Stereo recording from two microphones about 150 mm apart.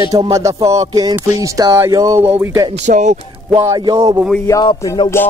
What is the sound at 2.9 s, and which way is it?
Speech, 50° right (ahead or behind).